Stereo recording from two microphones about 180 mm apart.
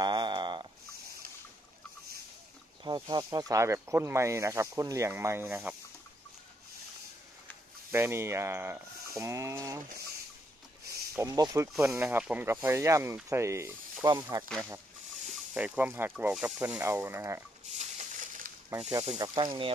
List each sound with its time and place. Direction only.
0.0 s a sound: 25° right (ahead or behind)
2.8 s speech: 25° right (ahead or behind)
7.9 s speech: 15° right (ahead or behind)
11.1 s speech: 20° right (ahead or behind)
15.3 s speech: 10° right (ahead or behind)
17.6 s crushing: 40° right (ahead or behind)
19.1 s speech: 25° right (ahead or behind)